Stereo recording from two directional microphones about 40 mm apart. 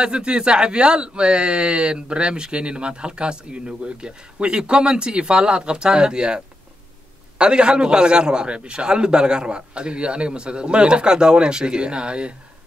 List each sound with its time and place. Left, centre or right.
0.0 s speech: right